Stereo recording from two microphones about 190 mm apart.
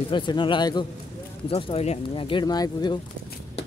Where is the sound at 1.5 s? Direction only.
35° left (ahead or behind).